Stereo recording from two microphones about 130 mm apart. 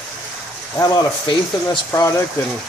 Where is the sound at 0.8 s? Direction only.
35° left (ahead or behind).